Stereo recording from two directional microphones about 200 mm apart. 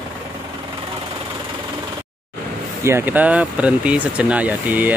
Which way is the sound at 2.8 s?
10° right (ahead or behind).